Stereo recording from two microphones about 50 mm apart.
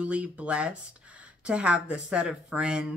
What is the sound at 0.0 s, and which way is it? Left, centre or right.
Speech, right.